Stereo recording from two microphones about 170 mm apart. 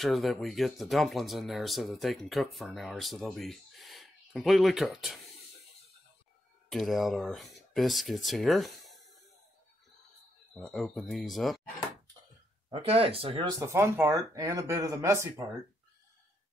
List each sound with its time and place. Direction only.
0.0 s speech: centre (ahead or behind)
6.7 s speech: centre (ahead or behind)
10.5 s speech: centre (ahead or behind)
12.6 s speech: 35° right (ahead or behind)
13.6 s speech: 15° right (ahead or behind)